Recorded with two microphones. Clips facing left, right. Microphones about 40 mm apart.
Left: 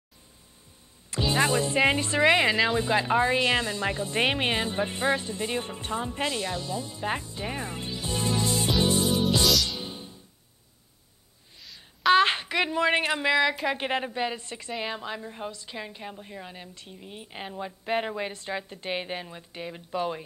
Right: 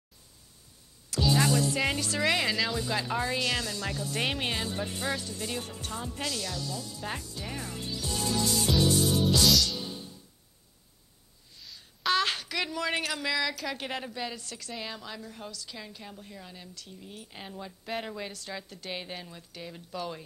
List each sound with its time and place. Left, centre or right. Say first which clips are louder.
1.1 s speech: left 2 dB; left
9.6 s music: even; left
12.1 s a woman's voice: left 7 dB; left